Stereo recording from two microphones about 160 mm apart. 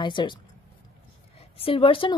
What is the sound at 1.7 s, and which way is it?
Speech, 35° left (ahead or behind).